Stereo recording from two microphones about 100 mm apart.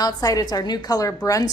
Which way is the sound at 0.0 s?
35° left (ahead or behind).